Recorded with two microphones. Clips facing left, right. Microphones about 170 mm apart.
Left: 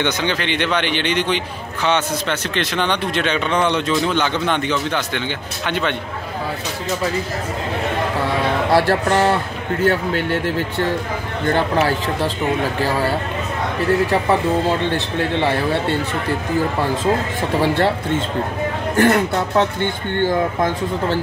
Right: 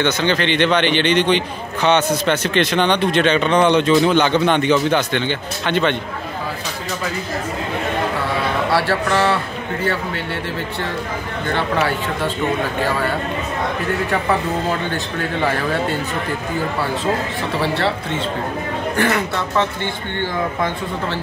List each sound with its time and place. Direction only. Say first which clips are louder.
0.0 s a man's voice: right 3 dB; 10° left (ahead or behind)
8.7 s speech: left 3 dB; 45° left (ahead or behind)
14.9 s speech: left 3 dB; 25° left (ahead or behind)
17.6 s speech: left 3 dB; 45° left (ahead or behind)
18.9 s speech: left 5 dB; 45° left (ahead or behind)